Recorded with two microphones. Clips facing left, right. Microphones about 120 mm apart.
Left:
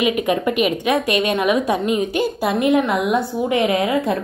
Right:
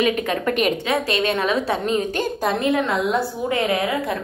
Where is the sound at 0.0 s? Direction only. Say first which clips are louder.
Left 2 dB; 10° left (ahead or behind).